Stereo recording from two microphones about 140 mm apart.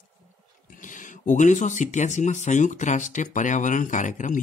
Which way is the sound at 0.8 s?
65° left (ahead or behind).